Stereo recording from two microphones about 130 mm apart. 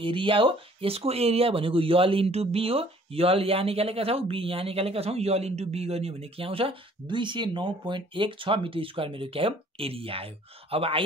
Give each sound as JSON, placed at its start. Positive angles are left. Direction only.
{"t": 0.0, "sound": "speech", "side_deg": -40}